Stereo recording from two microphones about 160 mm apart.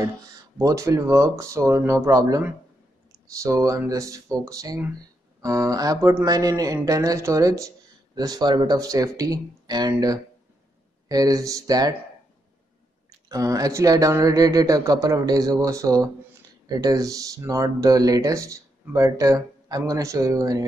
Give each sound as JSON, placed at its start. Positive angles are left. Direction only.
{"t": 0.6, "sound": "speech", "side_deg": -20}
{"t": 13.3, "sound": "speech", "side_deg": -20}